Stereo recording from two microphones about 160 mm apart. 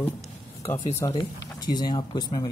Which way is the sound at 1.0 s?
25° left (ahead or behind).